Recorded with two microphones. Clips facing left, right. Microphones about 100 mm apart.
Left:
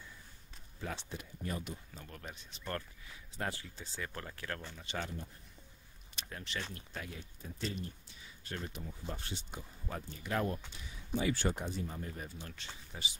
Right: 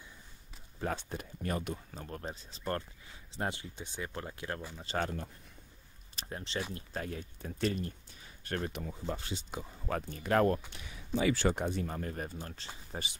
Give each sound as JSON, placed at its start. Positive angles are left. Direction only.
{"t": 0.7, "sound": "speech", "side_deg": -45}
{"t": 2.0, "sound": "speech", "side_deg": -35}
{"t": 3.3, "sound": "speech", "side_deg": -20}
{"t": 4.9, "sound": "speech", "side_deg": -35}
{"t": 6.1, "sound": "speech", "side_deg": -30}
{"t": 11.1, "sound": "speech", "side_deg": -90}
{"t": 11.6, "sound": "speech", "side_deg": -60}